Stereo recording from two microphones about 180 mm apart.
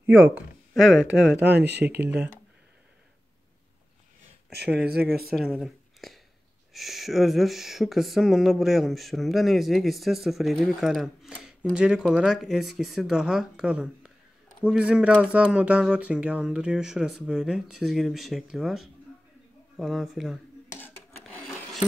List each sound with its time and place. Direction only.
0.0 s speech: 10° right (ahead or behind)
1.4 s speech: 65° right (ahead or behind)
4.8 s speech: 60° right (ahead or behind)
5.3 s speech: centre (ahead or behind)